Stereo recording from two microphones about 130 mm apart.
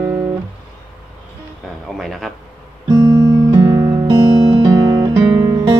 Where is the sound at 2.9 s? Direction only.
30° right (ahead or behind).